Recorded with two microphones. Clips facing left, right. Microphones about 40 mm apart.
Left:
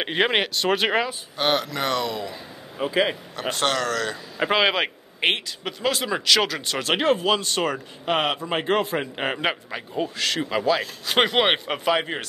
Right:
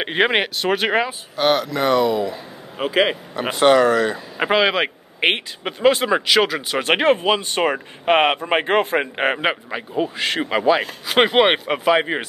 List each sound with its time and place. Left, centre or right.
0.0 s speech: centre
2.8 s a man's voice: right
3.3 s speech: centre
4.5 s speech: centre
5.7 s speech: right
6.8 s a man's voice: right
7.2 s speech: right
8.1 s a man's voice: right
9.4 s speech: centre
10.2 s speech: right
11.1 s speech: centre